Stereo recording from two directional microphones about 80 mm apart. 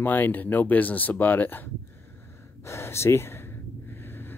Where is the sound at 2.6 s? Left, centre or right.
Left.